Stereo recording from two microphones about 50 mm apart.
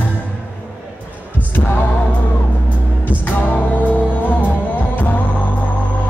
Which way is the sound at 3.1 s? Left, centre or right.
Left.